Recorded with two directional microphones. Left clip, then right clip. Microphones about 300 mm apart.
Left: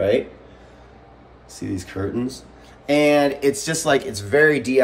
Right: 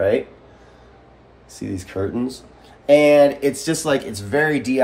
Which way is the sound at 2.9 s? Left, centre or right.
Centre.